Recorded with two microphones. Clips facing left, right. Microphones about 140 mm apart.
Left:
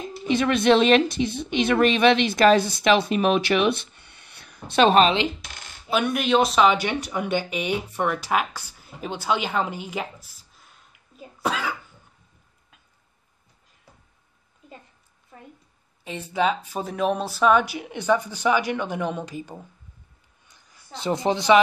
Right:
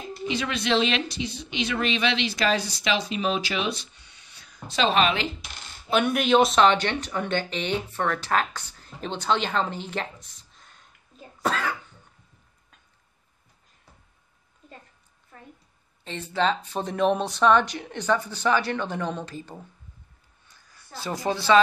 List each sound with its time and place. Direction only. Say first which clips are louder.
0.3 s a woman's voice: left 7 dB; 55° left (ahead or behind)
5.9 s speech: right 1 dB; centre (ahead or behind)
16.0 s speech: left 2 dB; 10° left (ahead or behind)
20.4 s a sound: left 1 dB; 20° left (ahead or behind)